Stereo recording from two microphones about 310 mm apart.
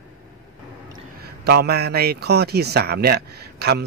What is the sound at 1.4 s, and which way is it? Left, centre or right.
Speech, right.